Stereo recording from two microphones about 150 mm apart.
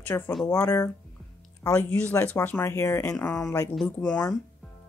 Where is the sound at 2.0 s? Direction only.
10° left (ahead or behind).